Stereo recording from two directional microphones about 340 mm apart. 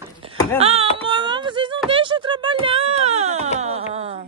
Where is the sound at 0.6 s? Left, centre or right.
Centre.